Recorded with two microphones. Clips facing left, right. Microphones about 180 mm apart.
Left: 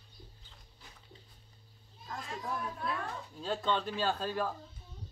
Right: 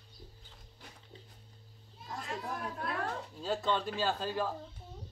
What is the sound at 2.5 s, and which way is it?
Speech, 60° right (ahead or behind).